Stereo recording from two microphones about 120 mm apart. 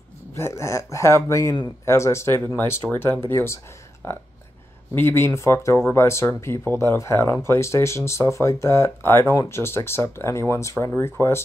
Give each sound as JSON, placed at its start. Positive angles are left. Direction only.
{"t": 0.3, "sound": "speech", "side_deg": 25}